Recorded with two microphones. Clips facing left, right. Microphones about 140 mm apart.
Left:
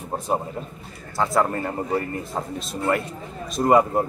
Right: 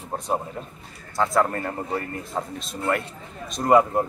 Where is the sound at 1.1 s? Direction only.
5° left (ahead or behind).